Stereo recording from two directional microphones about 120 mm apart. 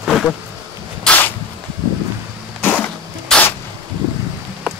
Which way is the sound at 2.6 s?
10° left (ahead or behind).